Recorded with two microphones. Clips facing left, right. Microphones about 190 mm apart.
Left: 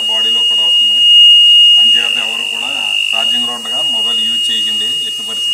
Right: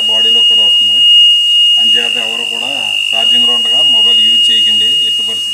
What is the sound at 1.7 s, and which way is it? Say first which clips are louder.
Speech: right 5 dB; 35° right (ahead or behind).